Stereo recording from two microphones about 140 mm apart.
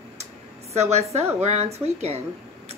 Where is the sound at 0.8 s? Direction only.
50° right (ahead or behind).